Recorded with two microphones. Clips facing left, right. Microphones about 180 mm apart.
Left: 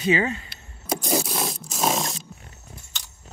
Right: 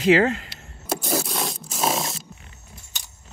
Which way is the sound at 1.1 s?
Centre (ahead or behind).